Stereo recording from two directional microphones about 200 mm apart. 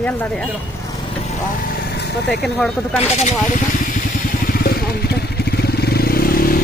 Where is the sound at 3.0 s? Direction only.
35° left (ahead or behind).